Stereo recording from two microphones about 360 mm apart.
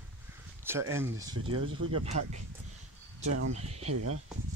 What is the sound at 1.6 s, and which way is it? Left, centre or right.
Speech, right.